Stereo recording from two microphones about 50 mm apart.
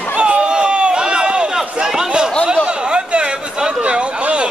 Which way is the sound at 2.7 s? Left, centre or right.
Centre.